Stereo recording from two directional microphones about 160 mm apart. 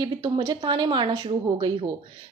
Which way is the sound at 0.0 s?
30° right (ahead or behind).